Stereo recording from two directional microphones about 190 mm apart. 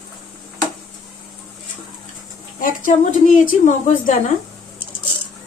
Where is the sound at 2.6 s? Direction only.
45° left (ahead or behind).